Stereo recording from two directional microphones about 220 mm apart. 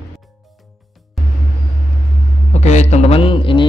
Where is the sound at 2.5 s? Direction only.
30° left (ahead or behind).